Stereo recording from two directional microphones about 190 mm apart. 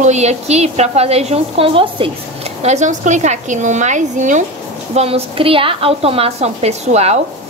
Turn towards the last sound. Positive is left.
turn(degrees=-35)  # may be behind; listen again after turning